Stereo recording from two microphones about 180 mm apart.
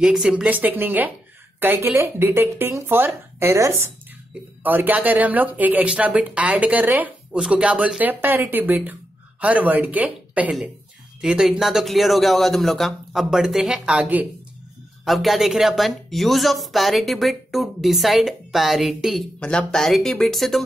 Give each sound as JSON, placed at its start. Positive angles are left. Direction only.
{"t": 0.0, "sound": "speech", "side_deg": -5}